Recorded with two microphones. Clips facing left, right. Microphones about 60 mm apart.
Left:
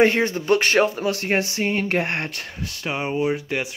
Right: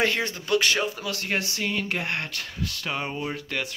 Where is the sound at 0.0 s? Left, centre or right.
Left.